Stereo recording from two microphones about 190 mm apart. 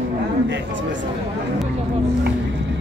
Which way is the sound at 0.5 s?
75° right (ahead or behind).